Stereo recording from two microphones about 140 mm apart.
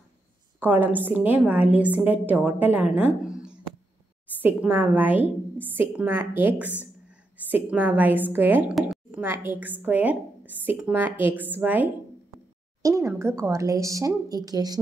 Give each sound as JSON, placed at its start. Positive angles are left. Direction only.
{"t": 0.6, "sound": "a woman's voice", "side_deg": -10}